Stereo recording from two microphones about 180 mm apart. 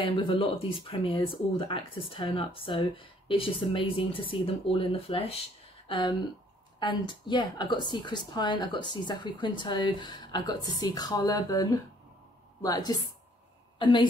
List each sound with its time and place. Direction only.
0.0 s a woman's voice: 30° left (ahead or behind)